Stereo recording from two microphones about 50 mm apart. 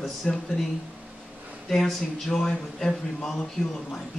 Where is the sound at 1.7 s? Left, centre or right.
Centre.